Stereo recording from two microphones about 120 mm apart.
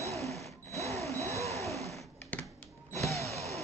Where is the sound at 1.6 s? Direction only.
Centre (ahead or behind).